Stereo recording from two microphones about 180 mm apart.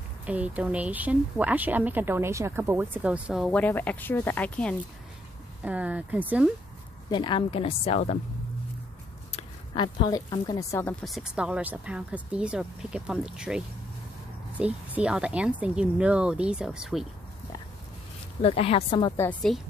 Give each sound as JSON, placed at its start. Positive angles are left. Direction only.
{"t": 0.2, "sound": "speech", "side_deg": -10}
{"t": 3.4, "sound": "speech", "side_deg": 10}
{"t": 5.6, "sound": "speech", "side_deg": -5}
{"t": 7.1, "sound": "speech", "side_deg": 25}
{"t": 9.3, "sound": "a woman's voice", "side_deg": 30}
{"t": 14.6, "sound": "a woman's voice", "side_deg": -5}
{"t": 18.4, "sound": "speech", "side_deg": 30}
{"t": 19.1, "sound": "a woman's voice", "side_deg": 5}